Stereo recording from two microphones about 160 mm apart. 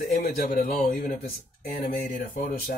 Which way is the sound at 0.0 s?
65° left (ahead or behind).